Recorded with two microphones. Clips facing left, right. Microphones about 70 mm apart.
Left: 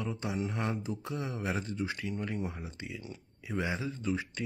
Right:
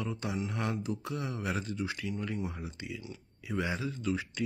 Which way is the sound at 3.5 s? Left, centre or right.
Left.